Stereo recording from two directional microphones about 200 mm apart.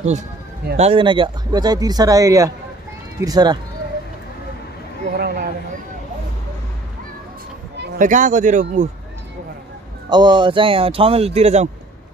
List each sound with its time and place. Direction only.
0.7 s speech: 30° right (ahead or behind)
5.1 s a sound: 50° right (ahead or behind)
8.0 s speech: 40° right (ahead or behind)
10.0 s speech: 20° right (ahead or behind)